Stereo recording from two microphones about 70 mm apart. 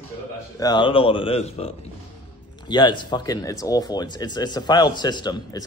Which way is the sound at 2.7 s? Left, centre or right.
Left.